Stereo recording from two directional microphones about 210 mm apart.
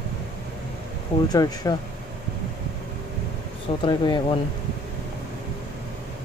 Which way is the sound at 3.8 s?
20° left (ahead or behind).